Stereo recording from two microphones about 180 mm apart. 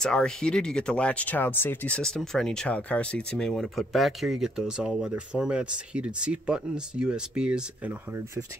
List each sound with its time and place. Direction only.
0.0 s speech: 5° left (ahead or behind)